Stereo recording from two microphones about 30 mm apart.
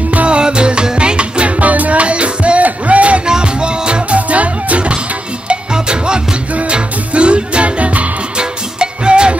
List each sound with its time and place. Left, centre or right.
0.1 s music: right
0.4 s music: right
1.6 s music: right
2.6 s a sound: right
3.3 s music: right
4.3 s music: right
5.5 s music: right
8.4 s music: right